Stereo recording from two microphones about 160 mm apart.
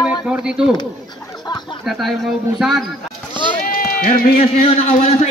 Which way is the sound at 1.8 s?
Centre (ahead or behind).